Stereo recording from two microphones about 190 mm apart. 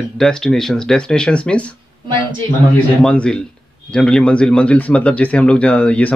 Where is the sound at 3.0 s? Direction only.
5° left (ahead or behind).